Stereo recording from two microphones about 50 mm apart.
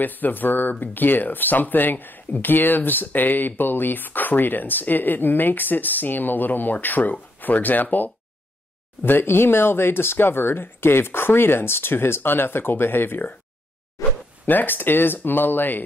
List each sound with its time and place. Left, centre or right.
0.0 s speech: left
9.0 s speech: left
14.0 s zipper: left
14.4 s speech: left